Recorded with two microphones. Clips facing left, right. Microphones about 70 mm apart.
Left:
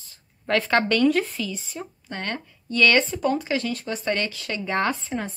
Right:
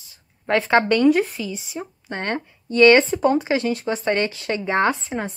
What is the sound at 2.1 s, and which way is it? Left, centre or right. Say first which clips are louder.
Speech: right 6 dB; right.